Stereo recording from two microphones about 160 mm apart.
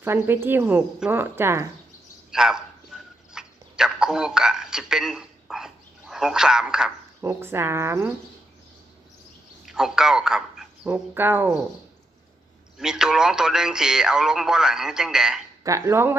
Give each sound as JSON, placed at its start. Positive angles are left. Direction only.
{"t": 0.0, "sound": "a woman's voice", "side_deg": -15}
{"t": 2.3, "sound": "a sound", "side_deg": -5}
{"t": 7.2, "sound": "a woman's voice", "side_deg": -15}
{"t": 9.7, "sound": "a man's voice", "side_deg": -5}
{"t": 12.7, "sound": "speech", "side_deg": -5}
{"t": 15.6, "sound": "a woman's voice", "side_deg": -20}